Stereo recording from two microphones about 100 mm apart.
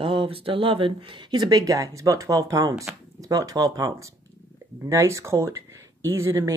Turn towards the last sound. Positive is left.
turn(degrees=-30)  # may be behind; listen again after turning